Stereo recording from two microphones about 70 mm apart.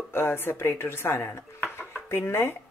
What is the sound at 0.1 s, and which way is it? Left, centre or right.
Speech, left.